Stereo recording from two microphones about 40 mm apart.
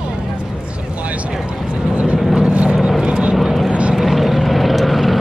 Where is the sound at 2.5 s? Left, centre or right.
Right.